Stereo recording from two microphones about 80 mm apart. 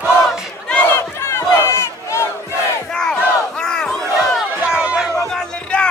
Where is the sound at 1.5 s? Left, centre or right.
Left.